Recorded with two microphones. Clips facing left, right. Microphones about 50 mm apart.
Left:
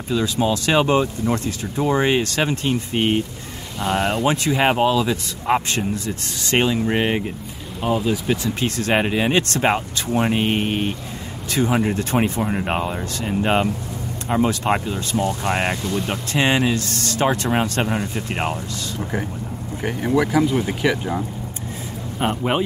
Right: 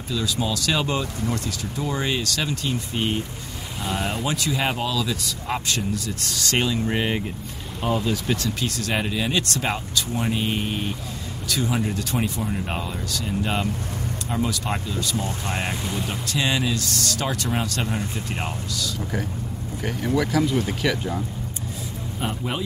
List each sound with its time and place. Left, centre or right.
0.1 s speech: left
8.5 s speech: left
15.8 s speech: centre
16.1 s speech: left
22.2 s speech: left